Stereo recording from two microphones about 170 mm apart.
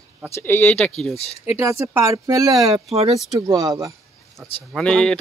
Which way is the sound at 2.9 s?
35° right (ahead or behind).